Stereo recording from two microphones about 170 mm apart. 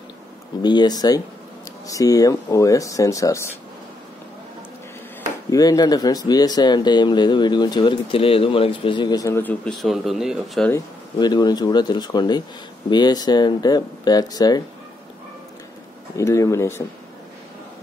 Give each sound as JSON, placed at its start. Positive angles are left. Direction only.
{"t": 0.6, "sound": "speech", "side_deg": 25}
{"t": 5.5, "sound": "speech", "side_deg": 20}
{"t": 11.1, "sound": "speech", "side_deg": 25}
{"t": 16.2, "sound": "speech", "side_deg": 15}